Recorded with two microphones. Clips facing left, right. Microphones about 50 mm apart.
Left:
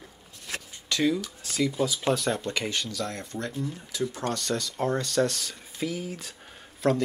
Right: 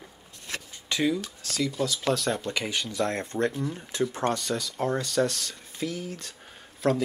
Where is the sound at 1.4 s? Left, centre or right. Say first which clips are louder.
Left 3 dB; centre.